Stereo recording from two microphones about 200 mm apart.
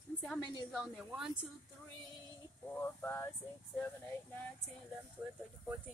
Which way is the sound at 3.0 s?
10° left (ahead or behind).